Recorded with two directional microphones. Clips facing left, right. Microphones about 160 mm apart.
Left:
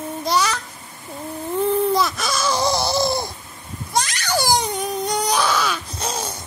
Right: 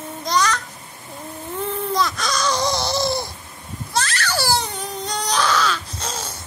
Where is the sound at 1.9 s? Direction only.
5° left (ahead or behind).